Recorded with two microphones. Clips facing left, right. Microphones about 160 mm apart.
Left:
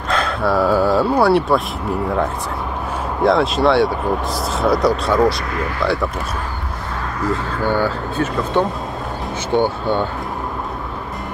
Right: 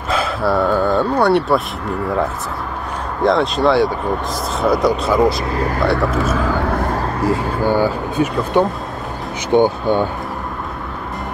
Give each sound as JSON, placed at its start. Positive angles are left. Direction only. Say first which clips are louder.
{"t": 0.1, "sound": "speech", "louder": "right 1 dB", "side_deg": -5}
{"t": 3.3, "sound": "speech", "louder": "even", "side_deg": 0}
{"t": 5.5, "sound": "speech", "louder": "right 3 dB", "side_deg": -35}
{"t": 5.9, "sound": "speech", "louder": "right 6 dB", "side_deg": -90}
{"t": 6.9, "sound": "a sound", "louder": "right 4 dB", "side_deg": -35}
{"t": 7.6, "sound": "speech", "louder": "right 2 dB", "side_deg": -10}